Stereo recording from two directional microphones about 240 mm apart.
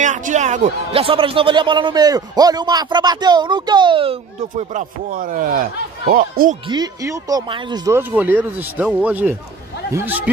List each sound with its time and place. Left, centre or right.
0.0 s a man's voice: right
6.7 s speech: centre